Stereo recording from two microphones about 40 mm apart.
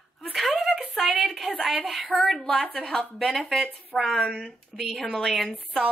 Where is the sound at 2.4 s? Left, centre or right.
Centre.